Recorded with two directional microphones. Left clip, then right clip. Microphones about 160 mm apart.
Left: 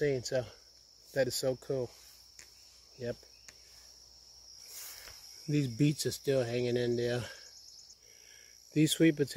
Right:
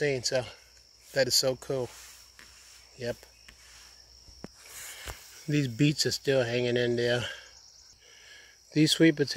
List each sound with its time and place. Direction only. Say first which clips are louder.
0.0 s speech: right 4 dB; 20° left (ahead or behind)
5.5 s speech: right 4 dB; centre (ahead or behind)
8.3 s a sound: right 5 dB; 5° left (ahead or behind)